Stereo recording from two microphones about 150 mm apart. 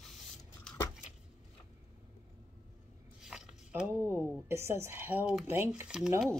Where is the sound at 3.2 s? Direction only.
5° right (ahead or behind).